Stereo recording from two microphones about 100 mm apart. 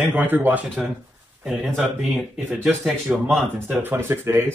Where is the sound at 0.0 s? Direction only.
20° right (ahead or behind).